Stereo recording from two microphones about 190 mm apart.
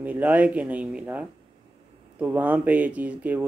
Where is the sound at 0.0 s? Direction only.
10° right (ahead or behind).